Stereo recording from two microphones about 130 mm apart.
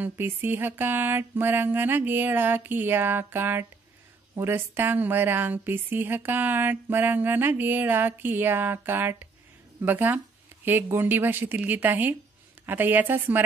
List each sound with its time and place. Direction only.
0.0 s a woman's voice: 15° right (ahead or behind)